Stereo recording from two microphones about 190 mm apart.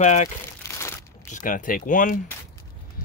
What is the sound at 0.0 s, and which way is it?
Speech, 40° left (ahead or behind).